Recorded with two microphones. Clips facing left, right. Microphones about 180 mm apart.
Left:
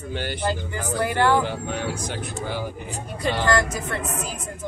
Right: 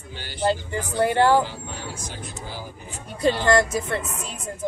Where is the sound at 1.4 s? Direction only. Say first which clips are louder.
Left 5 dB; 65° left (ahead or behind).